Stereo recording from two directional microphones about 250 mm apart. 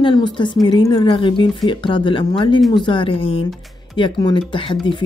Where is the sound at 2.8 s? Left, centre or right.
Centre.